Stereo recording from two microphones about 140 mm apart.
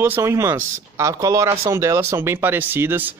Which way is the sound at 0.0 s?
15° right (ahead or behind).